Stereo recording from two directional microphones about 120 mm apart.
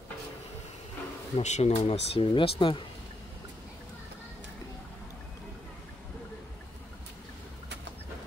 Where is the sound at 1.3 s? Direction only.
75° left (ahead or behind); by 2.8 s 50° left (ahead or behind).